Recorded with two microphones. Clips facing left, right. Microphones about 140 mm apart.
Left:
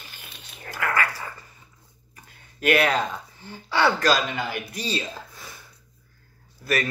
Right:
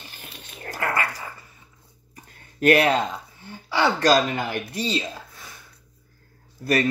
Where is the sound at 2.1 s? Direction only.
35° right (ahead or behind).